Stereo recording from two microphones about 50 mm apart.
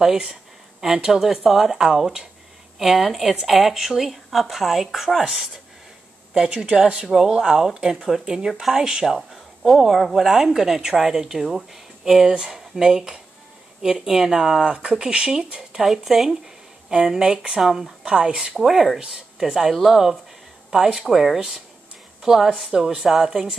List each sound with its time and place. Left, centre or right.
0.0 s speech: centre
14.7 s speech: centre
18.6 s speech: centre